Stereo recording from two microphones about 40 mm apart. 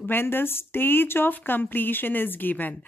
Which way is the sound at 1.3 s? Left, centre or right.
Left.